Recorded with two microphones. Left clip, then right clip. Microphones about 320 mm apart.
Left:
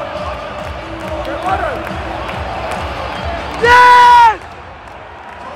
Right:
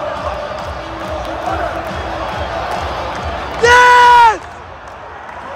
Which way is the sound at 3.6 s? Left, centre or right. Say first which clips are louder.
Left 1 dB; centre.